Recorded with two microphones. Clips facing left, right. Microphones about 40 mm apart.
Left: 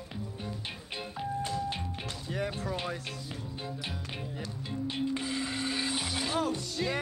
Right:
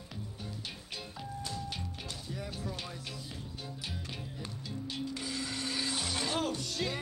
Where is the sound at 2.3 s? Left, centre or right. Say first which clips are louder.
Left 8 dB; left.